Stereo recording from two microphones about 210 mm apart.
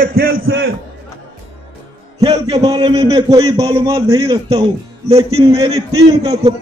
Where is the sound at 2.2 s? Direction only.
15° right (ahead or behind).